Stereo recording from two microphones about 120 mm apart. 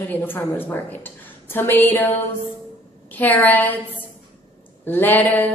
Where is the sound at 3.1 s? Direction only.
15° left (ahead or behind).